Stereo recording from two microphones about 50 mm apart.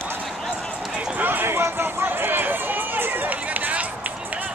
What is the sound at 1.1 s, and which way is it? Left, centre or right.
Run, right.